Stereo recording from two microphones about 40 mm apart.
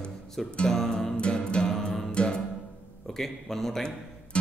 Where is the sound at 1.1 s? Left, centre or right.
Left.